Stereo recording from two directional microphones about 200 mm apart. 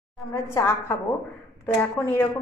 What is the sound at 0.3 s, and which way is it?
A woman's voice, 10° left (ahead or behind).